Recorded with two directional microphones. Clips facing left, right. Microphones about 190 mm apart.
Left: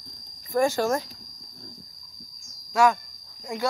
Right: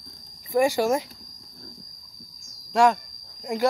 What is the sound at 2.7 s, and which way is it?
Speech, 30° right (ahead or behind).